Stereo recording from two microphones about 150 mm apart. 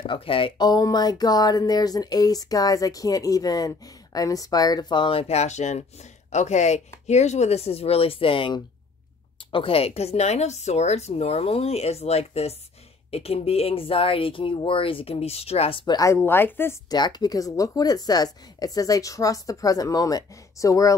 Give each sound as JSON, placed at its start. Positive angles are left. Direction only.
{"t": 0.0, "sound": "a woman's voice", "side_deg": 35}
{"t": 16.9, "sound": "speech", "side_deg": 25}